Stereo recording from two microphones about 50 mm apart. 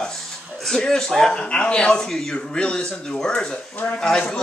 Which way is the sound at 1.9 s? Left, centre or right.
Centre.